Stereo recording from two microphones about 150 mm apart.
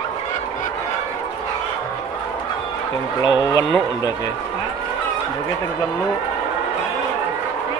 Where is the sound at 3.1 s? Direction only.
25° left (ahead or behind).